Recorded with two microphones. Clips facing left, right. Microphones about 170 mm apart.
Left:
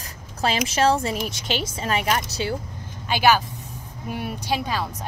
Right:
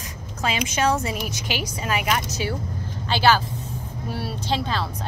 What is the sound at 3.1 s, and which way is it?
Speech, 15° left (ahead or behind).